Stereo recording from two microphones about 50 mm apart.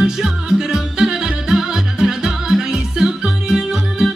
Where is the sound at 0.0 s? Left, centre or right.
Centre.